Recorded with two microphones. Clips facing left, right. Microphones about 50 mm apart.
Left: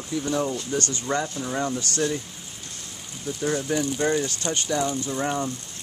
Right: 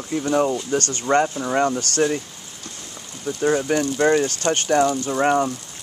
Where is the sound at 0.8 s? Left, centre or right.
Right.